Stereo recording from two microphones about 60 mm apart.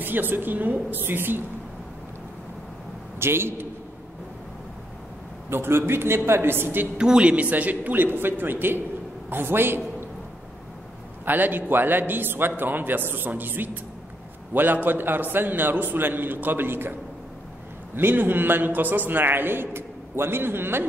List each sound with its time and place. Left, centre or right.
0.0 s a man's voice: right
3.2 s speech: right
5.5 s speech: right
7.0 s a man's voice: centre; by 9.8 s right
11.2 s a man's voice: right
17.9 s a man's voice: right